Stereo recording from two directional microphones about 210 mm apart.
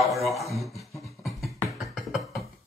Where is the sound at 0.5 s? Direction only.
Centre (ahead or behind).